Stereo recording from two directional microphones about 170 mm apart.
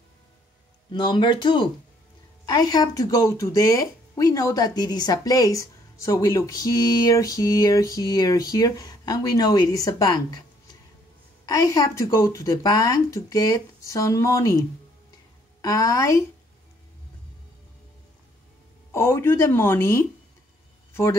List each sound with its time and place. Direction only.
0.9 s speech: 25° left (ahead or behind)
15.6 s speech: 20° left (ahead or behind)
18.9 s speech: 15° left (ahead or behind)